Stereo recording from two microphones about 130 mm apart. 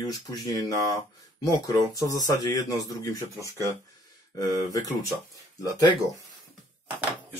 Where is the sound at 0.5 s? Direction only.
25° left (ahead or behind).